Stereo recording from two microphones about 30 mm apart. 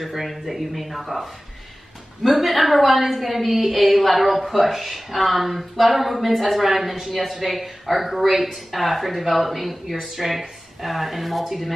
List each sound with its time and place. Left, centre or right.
0.0 s a woman's voice: centre